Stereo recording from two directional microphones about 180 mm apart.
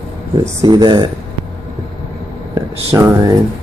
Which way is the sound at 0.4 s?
20° right (ahead or behind).